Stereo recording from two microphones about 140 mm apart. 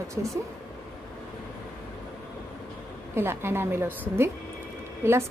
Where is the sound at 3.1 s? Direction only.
15° right (ahead or behind).